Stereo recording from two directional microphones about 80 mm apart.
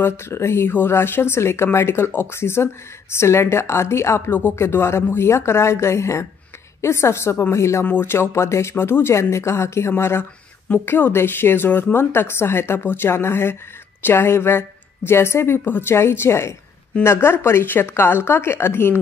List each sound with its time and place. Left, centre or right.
0.0 s a woman's voice: left